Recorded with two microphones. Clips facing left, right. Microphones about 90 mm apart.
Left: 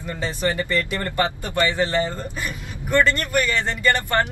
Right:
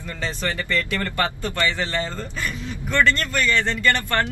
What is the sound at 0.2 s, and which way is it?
Speech, 15° left (ahead or behind).